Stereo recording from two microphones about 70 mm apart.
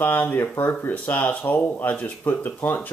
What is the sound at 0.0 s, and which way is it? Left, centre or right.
Speech, left.